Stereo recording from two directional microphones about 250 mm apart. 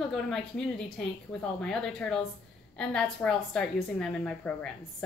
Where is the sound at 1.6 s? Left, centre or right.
Centre.